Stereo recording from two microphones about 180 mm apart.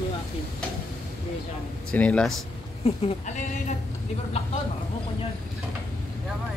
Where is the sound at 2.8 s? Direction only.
35° left (ahead or behind).